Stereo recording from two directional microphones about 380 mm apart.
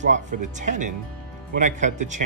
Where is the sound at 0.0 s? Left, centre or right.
Centre.